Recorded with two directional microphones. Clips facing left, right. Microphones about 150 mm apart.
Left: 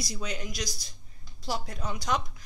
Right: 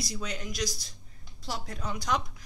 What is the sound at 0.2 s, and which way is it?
Speech, 5° left (ahead or behind).